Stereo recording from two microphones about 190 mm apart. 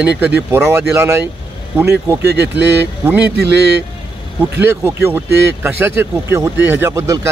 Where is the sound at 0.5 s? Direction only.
10° right (ahead or behind).